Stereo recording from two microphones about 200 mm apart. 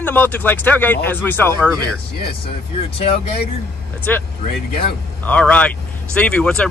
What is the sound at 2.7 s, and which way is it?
Speech, 30° left (ahead or behind).